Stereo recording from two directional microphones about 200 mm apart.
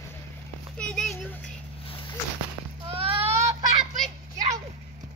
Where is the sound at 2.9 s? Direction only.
25° right (ahead or behind).